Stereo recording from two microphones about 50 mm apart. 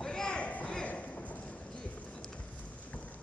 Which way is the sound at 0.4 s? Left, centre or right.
Left.